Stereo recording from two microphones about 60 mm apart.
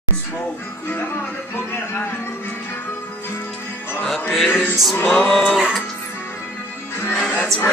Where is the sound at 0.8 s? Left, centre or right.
Left.